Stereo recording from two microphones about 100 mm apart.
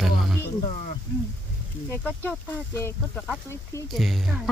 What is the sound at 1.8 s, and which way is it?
Speech, 20° left (ahead or behind).